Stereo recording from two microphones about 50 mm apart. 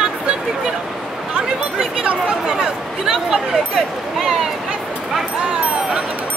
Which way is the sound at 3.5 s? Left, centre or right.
Centre.